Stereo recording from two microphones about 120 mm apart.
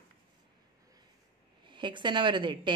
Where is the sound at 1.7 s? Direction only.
40° right (ahead or behind).